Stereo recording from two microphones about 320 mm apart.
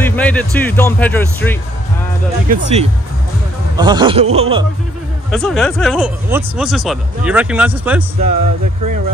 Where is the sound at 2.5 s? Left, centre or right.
Right.